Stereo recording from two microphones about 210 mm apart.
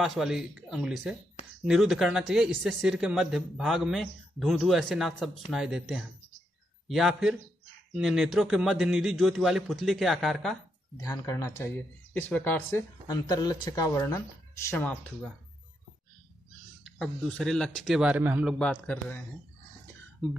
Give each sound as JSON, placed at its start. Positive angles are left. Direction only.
{"t": 0.0, "sound": "a man's voice", "side_deg": 0}
{"t": 11.0, "sound": "speech", "side_deg": 15}
{"t": 17.0, "sound": "a man's voice", "side_deg": 0}